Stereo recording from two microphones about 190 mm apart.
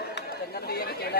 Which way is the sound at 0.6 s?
55° left (ahead or behind).